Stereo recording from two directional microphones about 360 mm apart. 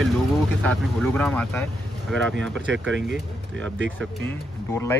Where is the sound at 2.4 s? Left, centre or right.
Right.